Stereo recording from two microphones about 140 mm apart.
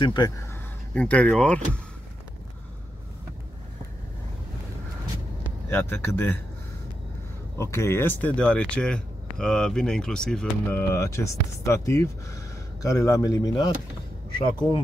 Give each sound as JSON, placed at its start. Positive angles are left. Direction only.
{"t": 0.0, "sound": "speech", "side_deg": 30}
{"t": 0.9, "sound": "speech", "side_deg": 10}
{"t": 5.7, "sound": "speech", "side_deg": 15}
{"t": 7.5, "sound": "speech", "side_deg": 20}